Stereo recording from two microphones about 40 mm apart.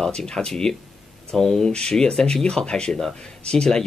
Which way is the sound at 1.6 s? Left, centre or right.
Centre.